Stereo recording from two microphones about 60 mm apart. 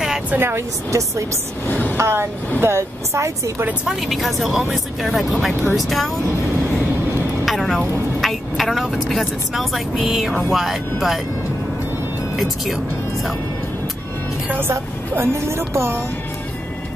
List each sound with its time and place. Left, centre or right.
0.4 s speech: right
1.7 s a woman's voice: left
2.0 s speech: right
3.8 s a woman's voice: centre
7.4 s a woman's voice: centre
12.4 s speech: centre
14.6 s speech: right